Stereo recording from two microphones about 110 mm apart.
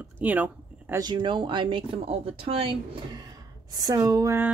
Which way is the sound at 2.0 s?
60° right (ahead or behind).